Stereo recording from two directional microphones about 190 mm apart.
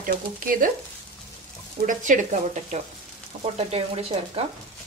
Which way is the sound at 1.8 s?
40° right (ahead or behind).